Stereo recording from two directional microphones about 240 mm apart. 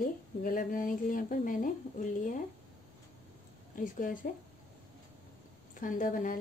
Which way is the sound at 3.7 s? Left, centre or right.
Left.